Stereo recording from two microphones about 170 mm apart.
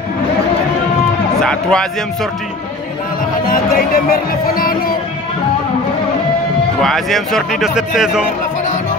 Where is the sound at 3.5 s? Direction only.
60° left (ahead or behind).